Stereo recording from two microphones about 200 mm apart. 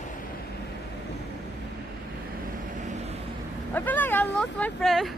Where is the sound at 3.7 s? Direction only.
10° left (ahead or behind).